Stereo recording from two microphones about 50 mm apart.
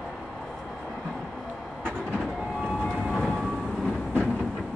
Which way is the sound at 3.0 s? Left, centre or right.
Centre.